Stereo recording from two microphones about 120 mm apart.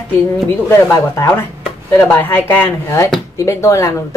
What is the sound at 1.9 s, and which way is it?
A woman's voice, 20° left (ahead or behind).